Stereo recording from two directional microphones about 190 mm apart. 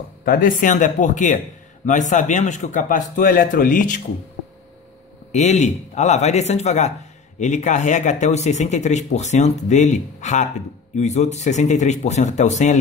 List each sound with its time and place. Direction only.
0.2 s speech: 50° left (ahead or behind)
5.3 s speech: 35° left (ahead or behind)